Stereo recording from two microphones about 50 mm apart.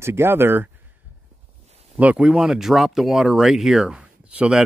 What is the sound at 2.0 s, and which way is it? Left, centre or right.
Speech, right.